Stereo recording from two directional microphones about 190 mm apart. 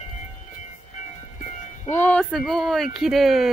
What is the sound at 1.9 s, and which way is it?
Speech, 10° left (ahead or behind).